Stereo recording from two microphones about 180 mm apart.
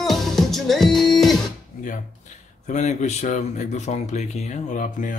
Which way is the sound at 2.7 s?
40° left (ahead or behind).